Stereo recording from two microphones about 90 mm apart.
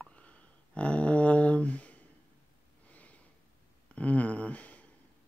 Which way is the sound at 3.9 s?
15° left (ahead or behind).